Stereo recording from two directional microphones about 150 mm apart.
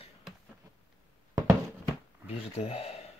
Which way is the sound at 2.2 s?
45° left (ahead or behind).